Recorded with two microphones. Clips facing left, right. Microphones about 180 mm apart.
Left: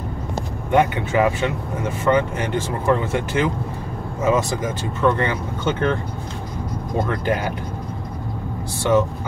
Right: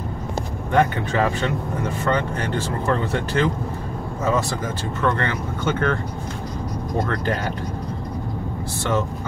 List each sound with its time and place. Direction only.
0.7 s speech: 15° left (ahead or behind)
7.0 s speech: 20° left (ahead or behind)